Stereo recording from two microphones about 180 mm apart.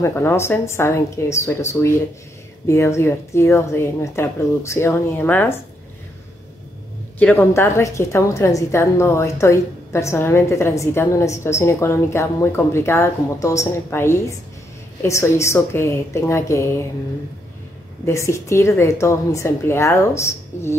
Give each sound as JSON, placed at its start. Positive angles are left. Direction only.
{"t": 0.0, "sound": "a woman's voice", "side_deg": 15}
{"t": 7.2, "sound": "a woman's voice", "side_deg": 10}
{"t": 18.0, "sound": "a woman's voice", "side_deg": 15}